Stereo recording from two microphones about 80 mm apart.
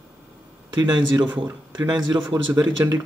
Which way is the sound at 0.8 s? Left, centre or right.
Right.